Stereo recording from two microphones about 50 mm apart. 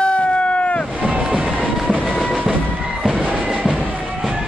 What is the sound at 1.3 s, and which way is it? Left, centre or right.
Train, centre.